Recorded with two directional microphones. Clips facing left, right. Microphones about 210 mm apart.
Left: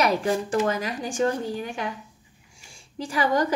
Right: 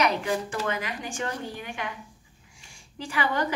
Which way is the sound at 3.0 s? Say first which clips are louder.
Left 5 dB; 35° left (ahead or behind).